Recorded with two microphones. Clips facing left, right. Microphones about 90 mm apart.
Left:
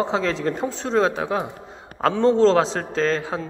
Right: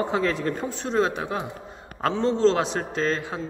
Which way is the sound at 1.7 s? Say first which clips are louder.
Left 4 dB; 80° left.